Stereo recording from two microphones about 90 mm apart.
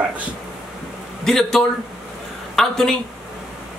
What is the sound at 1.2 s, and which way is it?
Speech, 5° left (ahead or behind).